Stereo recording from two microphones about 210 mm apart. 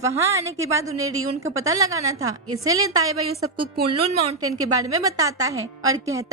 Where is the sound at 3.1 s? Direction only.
90° right.